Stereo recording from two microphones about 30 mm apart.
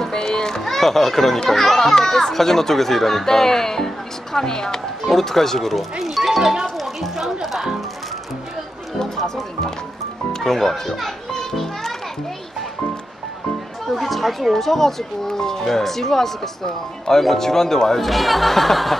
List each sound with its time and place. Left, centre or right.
0.1 s music: left
0.6 s a child's voice: centre
5.1 s a child's voice: centre
5.9 s music: centre
10.4 s a child's voice: centre
11.5 s children playing: centre
13.8 s chatter: centre
14.5 s a child's voice: centre
18.0 s speech: centre